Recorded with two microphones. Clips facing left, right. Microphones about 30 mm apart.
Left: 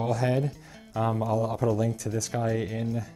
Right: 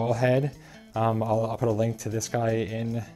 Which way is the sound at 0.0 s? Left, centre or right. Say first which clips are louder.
Right 3 dB; centre.